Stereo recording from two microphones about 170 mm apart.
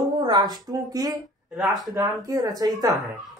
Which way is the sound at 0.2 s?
25° right (ahead or behind).